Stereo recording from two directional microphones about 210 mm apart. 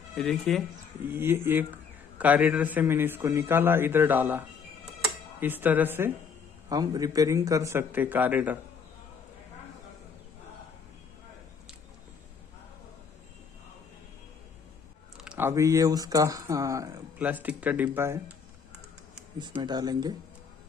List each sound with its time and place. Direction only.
0.1 s speech: centre (ahead or behind)
1.1 s speech: 10° right (ahead or behind)
15.1 s speech: 5° right (ahead or behind)
19.6 s speech: 20° right (ahead or behind)